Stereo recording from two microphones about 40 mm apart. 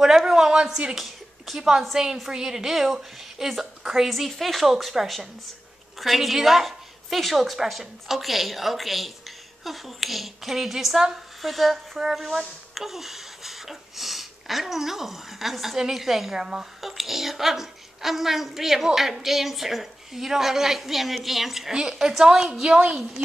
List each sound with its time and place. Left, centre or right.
0.0 s a sound: centre
0.9 s a woman's voice: centre
4.1 s a woman's voice: centre
16.3 s a woman's voice: centre
16.8 s a woman's voice: centre; by 23.2 s right